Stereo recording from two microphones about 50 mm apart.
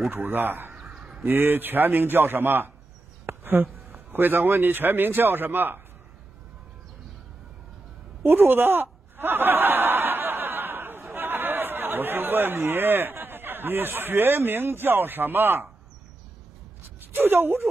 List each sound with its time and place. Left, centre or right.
0.1 s a man's voice: right
0.7 s a sound: centre
1.2 s a man's voice: right
3.3 s a sound: right
3.9 s a man's voice: right
8.3 s a man's voice: right
9.1 s snicker: right
17.0 s speech: right